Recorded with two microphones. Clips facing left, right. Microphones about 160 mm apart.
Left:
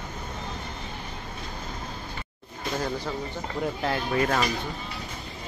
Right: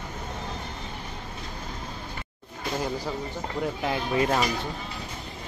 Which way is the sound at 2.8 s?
5° right (ahead or behind).